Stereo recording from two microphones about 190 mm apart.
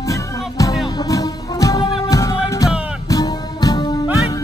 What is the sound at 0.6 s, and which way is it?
Music, 20° left (ahead or behind).